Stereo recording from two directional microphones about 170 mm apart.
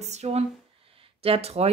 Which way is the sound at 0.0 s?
40° right (ahead or behind).